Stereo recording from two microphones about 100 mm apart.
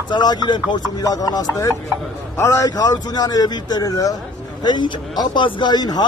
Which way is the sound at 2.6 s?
45° left (ahead or behind).